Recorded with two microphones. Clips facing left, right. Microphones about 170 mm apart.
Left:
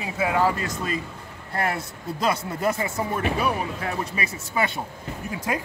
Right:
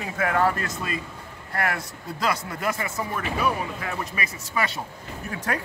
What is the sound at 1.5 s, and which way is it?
Speech, 25° left (ahead or behind).